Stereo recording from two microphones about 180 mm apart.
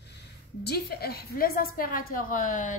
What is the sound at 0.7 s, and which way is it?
Speech, 60° left (ahead or behind).